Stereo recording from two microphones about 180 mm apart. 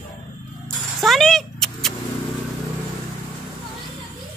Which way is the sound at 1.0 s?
Centre (ahead or behind).